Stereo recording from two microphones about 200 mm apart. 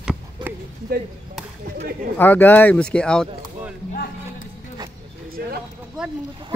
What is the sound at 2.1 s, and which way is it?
Speech, 10° left (ahead or behind).